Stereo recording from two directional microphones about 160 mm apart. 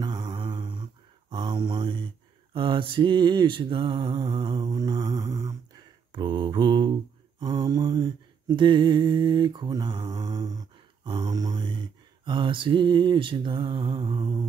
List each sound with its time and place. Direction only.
0.0 s mantra: 25° right (ahead or behind)